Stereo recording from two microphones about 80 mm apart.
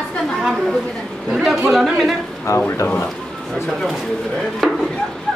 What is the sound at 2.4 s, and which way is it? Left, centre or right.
Speech, left.